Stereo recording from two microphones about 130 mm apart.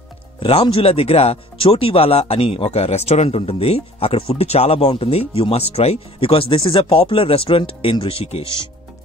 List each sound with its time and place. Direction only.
0.4 s speech: 45° left (ahead or behind)